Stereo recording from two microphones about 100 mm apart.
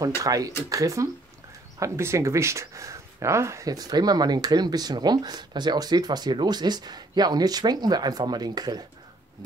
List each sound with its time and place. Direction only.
0.2 s speech: 35° right (ahead or behind)